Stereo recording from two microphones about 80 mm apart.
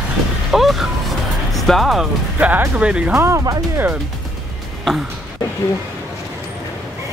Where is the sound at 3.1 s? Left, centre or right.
Right.